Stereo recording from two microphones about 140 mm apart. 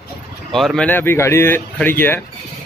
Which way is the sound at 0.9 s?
15° left (ahead or behind).